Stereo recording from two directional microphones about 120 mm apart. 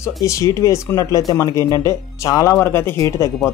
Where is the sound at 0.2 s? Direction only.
25° left (ahead or behind).